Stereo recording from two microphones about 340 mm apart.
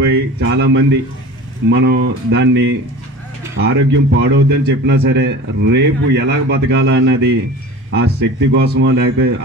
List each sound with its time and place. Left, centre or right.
0.0 s a man's voice: right